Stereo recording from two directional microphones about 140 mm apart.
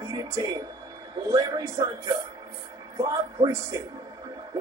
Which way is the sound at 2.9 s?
25° right (ahead or behind).